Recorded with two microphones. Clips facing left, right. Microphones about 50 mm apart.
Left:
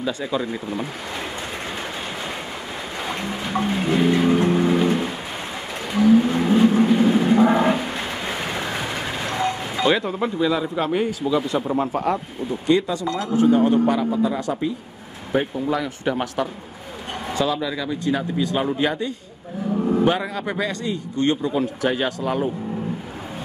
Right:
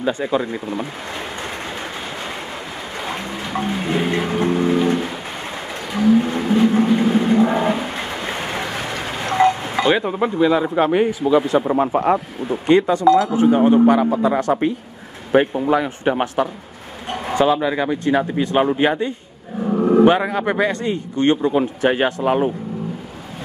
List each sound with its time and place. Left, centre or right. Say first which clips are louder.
0.0 s speech: right 4 dB; right
3.1 s music: even; centre
5.9 s whale vocalization: even; centre
6.8 s vehicle: right 1 dB; centre
7.3 s a sound: even; centre
9.4 s a sound: right 10 dB; right
9.8 s speech: right 2 dB; centre; by 13.0 s right
13.3 s speech: right 3 dB; right
14.2 s speech: right 5 dB; right
15.6 s speech: right 5 dB; right